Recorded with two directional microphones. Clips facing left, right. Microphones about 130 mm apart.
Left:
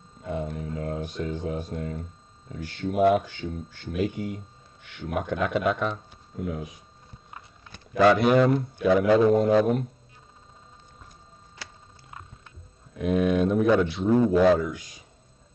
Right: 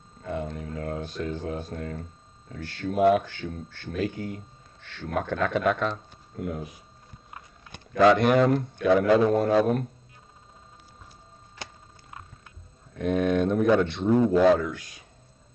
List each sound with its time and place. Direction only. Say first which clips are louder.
0.2 s a sound: left 1 dB; 10° left (ahead or behind)
1.1 s a man's voice: left 1 dB; 20° left (ahead or behind)
6.4 s speech: even; centre (ahead or behind)
7.9 s a man's voice: even; 5° left (ahead or behind)
12.9 s speech: left 1 dB; 5° left (ahead or behind)